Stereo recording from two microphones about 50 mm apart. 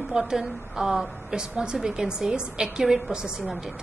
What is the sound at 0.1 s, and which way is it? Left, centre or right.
A woman's voice, centre.